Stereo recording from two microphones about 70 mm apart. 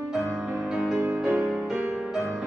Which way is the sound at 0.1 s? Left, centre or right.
Centre.